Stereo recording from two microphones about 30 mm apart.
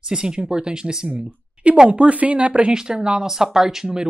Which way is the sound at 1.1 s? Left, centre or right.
Right.